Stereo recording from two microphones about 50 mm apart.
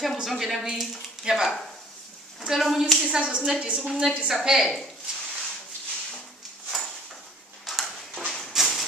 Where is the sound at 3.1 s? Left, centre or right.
Right.